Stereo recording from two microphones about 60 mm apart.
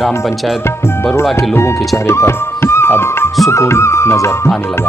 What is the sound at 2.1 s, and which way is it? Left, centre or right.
Music, left.